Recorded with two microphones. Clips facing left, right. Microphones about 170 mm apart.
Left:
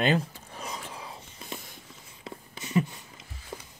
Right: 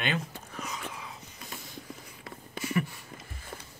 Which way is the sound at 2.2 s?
20° left (ahead or behind).